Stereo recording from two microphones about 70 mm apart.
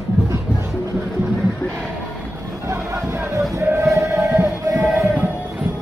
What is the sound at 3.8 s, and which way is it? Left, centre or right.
Music, right.